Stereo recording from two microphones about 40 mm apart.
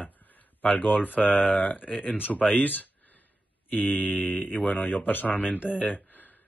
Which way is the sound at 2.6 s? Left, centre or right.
Left.